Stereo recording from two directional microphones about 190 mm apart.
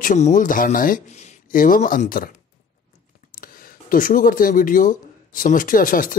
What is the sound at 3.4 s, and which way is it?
Speech, 50° left (ahead or behind).